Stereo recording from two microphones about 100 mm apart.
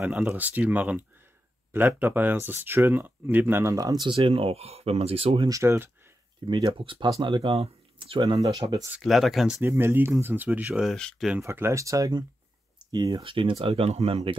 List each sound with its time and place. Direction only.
0.0 s speech: 15° right (ahead or behind)
3.7 s speech: 40° right (ahead or behind); by 5.5 s 65° right (ahead or behind)
5.5 s speech: 25° right (ahead or behind)
6.4 s speech: 55° right (ahead or behind)
8.2 s speech: 45° right (ahead or behind)
9.0 s speech: centre (ahead or behind)
9.6 s speech: 20° right (ahead or behind)
10.8 s speech: 5° left (ahead or behind)
11.3 s speech: 25° right (ahead or behind)
12.7 s clicking: 45° right (ahead or behind)
13.2 s speech: 60° right (ahead or behind); by 14.3 s 80° right